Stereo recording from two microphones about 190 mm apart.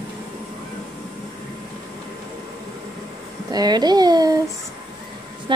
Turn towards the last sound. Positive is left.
turn(degrees=-25)  # may be behind; listen again after turning